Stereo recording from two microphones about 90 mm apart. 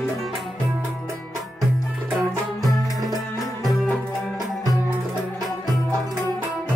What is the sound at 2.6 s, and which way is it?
Music, centre (ahead or behind).